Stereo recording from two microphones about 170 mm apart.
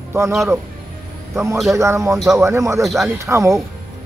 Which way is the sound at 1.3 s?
15° right (ahead or behind).